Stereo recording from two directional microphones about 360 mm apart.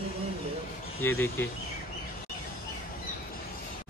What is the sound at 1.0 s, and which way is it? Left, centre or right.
Speech, centre.